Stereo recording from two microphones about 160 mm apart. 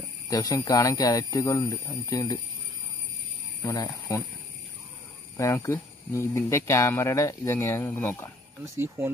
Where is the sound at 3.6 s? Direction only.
20° left (ahead or behind).